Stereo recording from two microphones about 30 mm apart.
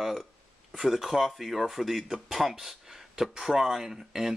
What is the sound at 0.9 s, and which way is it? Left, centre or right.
Speech, centre.